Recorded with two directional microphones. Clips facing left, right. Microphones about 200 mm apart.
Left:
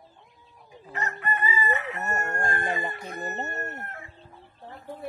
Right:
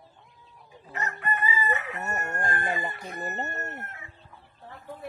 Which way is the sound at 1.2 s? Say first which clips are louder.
Left 1 dB; 30° left (ahead or behind).